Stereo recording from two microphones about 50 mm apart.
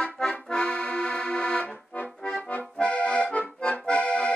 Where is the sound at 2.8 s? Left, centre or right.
Left.